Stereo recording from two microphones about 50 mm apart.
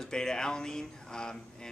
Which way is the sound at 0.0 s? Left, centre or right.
Centre.